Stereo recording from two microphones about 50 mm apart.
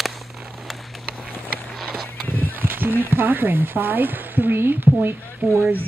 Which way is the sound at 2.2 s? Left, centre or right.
Left.